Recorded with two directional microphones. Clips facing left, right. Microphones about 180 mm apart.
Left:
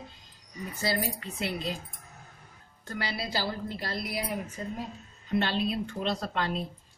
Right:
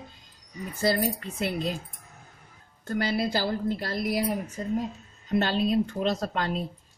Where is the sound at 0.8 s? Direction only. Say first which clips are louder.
Right 6 dB; 50° right (ahead or behind).